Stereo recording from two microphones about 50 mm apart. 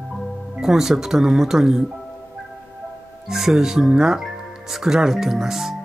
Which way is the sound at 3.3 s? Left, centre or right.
Centre.